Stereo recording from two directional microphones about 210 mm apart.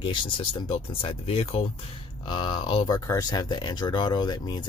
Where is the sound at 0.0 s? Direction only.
25° left (ahead or behind).